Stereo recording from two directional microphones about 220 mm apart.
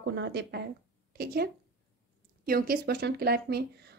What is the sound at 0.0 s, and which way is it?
Speech, 55° right (ahead or behind).